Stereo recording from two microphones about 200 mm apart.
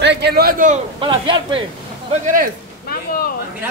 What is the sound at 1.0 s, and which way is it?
Speech, 25° right (ahead or behind).